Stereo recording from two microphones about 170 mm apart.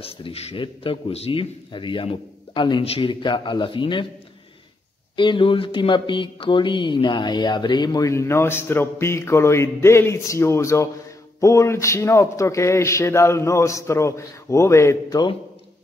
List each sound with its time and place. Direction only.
0.0 s mantra: 35° left (ahead or behind)
5.1 s mantra: 30° left (ahead or behind)
11.4 s speech: 20° left (ahead or behind)